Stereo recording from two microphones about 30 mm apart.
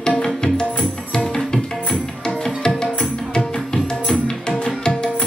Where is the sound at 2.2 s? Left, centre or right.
Left.